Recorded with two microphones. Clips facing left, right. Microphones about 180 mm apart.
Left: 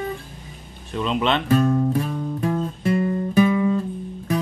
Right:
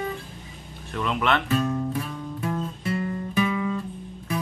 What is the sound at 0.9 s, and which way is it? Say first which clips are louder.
Music: left 3 dB; 20° left (ahead or behind).